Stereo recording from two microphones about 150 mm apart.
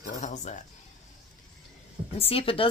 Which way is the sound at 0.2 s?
50° left (ahead or behind).